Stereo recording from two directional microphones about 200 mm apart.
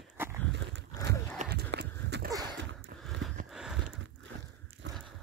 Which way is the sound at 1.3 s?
50° right (ahead or behind).